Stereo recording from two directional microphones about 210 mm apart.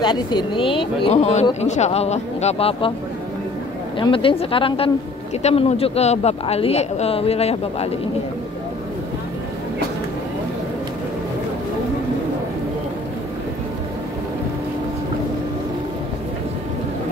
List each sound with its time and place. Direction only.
0.0 s speech: 20° left (ahead or behind)
4.0 s speech: 25° left (ahead or behind)